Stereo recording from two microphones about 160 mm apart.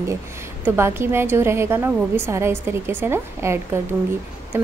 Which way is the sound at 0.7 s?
15° right (ahead or behind).